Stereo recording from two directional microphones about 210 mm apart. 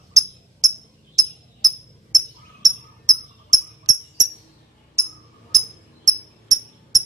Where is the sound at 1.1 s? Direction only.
15° right (ahead or behind).